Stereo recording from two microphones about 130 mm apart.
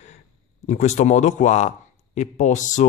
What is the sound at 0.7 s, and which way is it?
Speech, 65° left (ahead or behind).